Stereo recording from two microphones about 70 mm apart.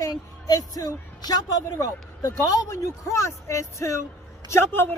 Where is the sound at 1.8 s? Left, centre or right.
Left.